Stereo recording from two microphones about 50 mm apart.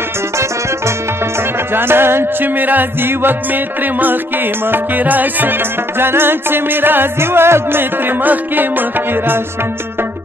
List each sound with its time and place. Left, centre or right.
0.4 s music: right
1.7 s music: right
2.4 s music: right